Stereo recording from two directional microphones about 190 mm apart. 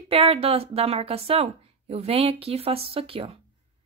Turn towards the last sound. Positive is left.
turn(degrees=-30)  # may be behind; listen again after turning